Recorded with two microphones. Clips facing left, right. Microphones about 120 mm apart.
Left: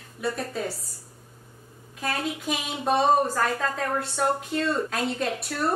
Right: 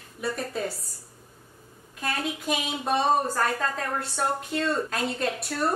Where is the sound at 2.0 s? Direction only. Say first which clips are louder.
Left 1 dB; centre (ahead or behind).